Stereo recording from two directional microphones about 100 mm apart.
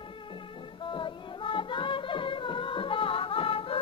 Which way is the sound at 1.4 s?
55° left (ahead or behind).